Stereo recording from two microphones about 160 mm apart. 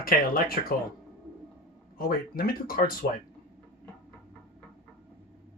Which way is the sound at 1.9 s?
65° left (ahead or behind).